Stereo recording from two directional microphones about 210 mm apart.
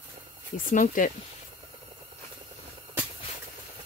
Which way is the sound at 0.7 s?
40° left (ahead or behind).